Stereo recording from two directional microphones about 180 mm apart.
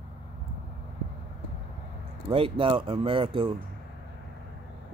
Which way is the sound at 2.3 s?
30° right (ahead or behind).